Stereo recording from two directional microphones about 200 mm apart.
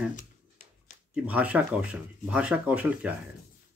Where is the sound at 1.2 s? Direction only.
5° right (ahead or behind).